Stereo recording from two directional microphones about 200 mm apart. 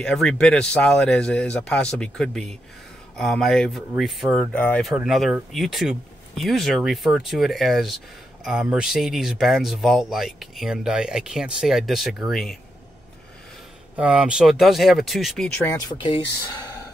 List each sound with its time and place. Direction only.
0.0 s speech: 5° left (ahead or behind)
13.9 s speech: 5° right (ahead or behind)
16.0 s speech: 25° left (ahead or behind)